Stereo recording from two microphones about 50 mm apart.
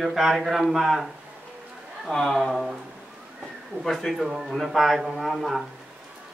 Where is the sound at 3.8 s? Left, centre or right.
Centre.